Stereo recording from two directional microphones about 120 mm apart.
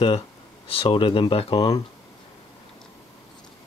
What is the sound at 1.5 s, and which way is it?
Speech, 30° left (ahead or behind).